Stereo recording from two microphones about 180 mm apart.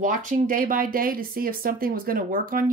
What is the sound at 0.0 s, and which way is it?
Speech, 50° right (ahead or behind).